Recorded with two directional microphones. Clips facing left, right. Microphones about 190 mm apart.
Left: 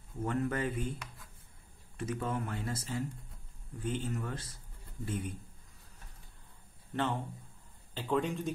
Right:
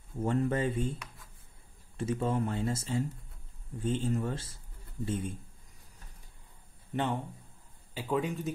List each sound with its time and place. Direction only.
0.2 s speech: 25° right (ahead or behind)
2.0 s speech: 25° right (ahead or behind)
6.9 s speech: 15° right (ahead or behind)